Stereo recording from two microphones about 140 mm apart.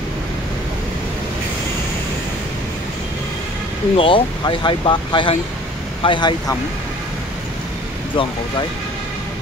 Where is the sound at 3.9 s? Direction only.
40° left (ahead or behind).